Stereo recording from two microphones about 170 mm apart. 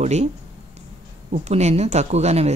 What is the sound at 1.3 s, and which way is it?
Speech, 40° right (ahead or behind).